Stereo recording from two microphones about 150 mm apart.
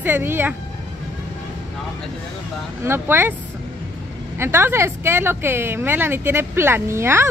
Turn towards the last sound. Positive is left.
turn(degrees=-15)  # may be behind; listen again after turning